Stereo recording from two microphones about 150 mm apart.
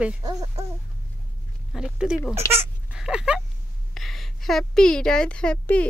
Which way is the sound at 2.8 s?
5° right (ahead or behind).